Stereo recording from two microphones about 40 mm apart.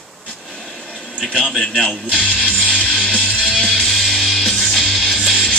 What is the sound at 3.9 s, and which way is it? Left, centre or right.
Music, centre.